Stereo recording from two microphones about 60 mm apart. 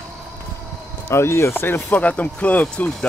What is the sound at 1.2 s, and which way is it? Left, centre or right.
Speech, left.